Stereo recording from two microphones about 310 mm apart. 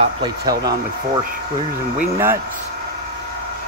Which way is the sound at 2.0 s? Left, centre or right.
Centre.